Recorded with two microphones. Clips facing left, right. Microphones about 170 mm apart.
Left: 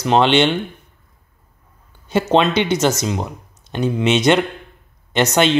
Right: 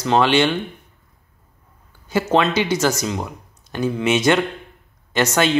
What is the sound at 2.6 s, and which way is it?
Speech, 20° left (ahead or behind).